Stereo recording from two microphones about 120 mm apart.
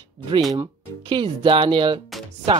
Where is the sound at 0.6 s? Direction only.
40° right (ahead or behind).